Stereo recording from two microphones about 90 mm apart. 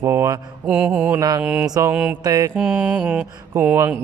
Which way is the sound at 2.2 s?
40° right (ahead or behind).